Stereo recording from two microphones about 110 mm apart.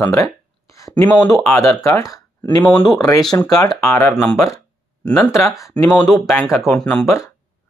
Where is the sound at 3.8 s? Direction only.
20° left (ahead or behind).